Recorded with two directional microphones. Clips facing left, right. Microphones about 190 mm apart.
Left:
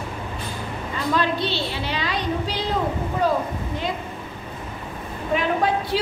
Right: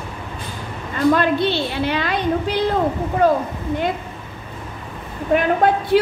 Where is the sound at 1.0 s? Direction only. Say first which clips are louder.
Right 7 dB; 55° right (ahead or behind).